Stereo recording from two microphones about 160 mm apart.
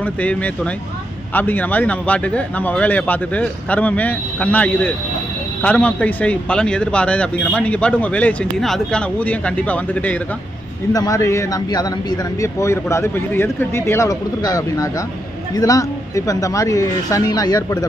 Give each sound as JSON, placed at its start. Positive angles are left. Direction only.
{"t": 0.0, "sound": "speech", "side_deg": 10}
{"t": 10.9, "sound": "speech", "side_deg": 20}